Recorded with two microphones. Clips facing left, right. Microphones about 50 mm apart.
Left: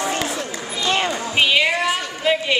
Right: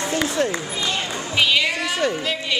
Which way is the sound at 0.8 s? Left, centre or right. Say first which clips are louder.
Left 8 dB; left.